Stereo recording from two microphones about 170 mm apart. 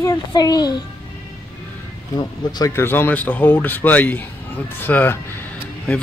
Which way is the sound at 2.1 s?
20° left (ahead or behind).